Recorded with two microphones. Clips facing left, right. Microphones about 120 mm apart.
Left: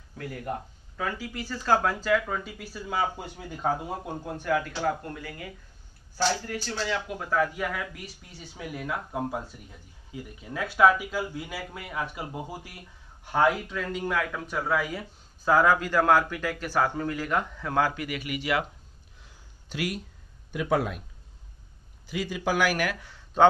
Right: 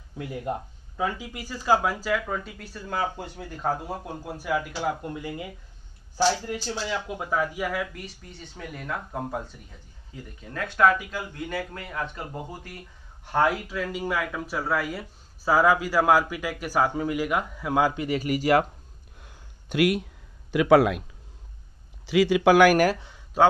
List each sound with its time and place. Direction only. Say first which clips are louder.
0.2 s speech: right 3 dB; 20° right (ahead or behind)
18.0 s speech: right 7 dB; 35° right (ahead or behind)
19.1 s a sound: right 5 dB; 55° right (ahead or behind)
20.5 s a man's voice: right 8 dB; 90° right
22.0 s a man's voice: right 10 dB; 85° right; by 22.8 s 60° right (ahead or behind)
22.9 s a sound: right 1 dB; 20° right (ahead or behind)